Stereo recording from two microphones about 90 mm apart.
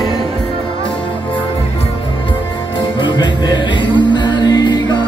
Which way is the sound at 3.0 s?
55° left (ahead or behind).